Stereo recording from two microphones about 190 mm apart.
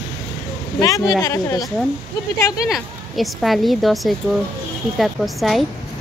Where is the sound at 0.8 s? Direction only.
20° left (ahead or behind).